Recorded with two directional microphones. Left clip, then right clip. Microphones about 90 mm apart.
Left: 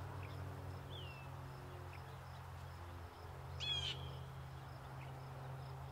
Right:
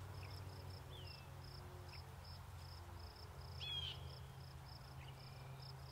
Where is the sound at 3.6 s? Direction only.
20° left (ahead or behind).